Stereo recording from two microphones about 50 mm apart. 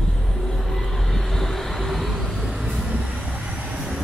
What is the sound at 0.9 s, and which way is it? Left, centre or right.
Vehicle, centre.